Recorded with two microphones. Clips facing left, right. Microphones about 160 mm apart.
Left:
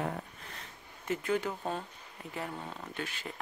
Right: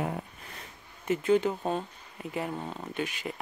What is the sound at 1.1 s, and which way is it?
Speech, 20° right (ahead or behind).